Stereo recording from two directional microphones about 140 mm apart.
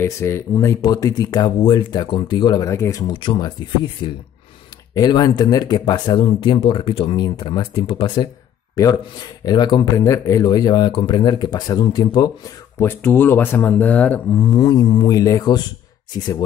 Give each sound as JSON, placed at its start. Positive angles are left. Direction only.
{"t": 0.0, "sound": "a man's voice", "side_deg": 20}
{"t": 8.7, "sound": "a man's voice", "side_deg": 25}
{"t": 12.7, "sound": "speech", "side_deg": 15}
{"t": 14.3, "sound": "a man's voice", "side_deg": 25}